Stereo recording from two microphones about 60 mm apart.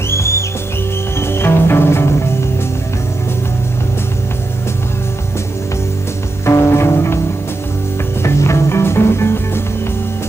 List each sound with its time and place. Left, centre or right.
0.1 s music: left
6.4 s music: left
8.2 s music: left